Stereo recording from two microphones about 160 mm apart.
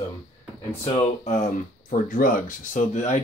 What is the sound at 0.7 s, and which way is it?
Speech, 45° left (ahead or behind).